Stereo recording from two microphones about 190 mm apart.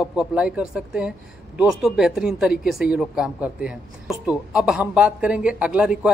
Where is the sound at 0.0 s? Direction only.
5° right (ahead or behind).